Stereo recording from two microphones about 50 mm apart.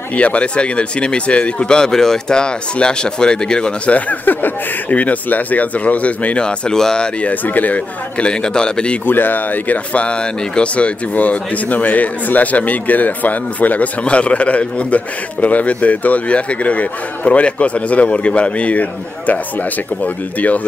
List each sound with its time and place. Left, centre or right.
0.1 s speech: left
3.9 s speech: left; by 7.1 s centre
7.2 s speech: left
8.3 s speech: centre
9.0 s speech: left
9.9 s speech: left
20.3 s speech: left